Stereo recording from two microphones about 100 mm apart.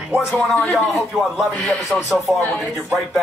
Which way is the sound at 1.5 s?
10° left (ahead or behind).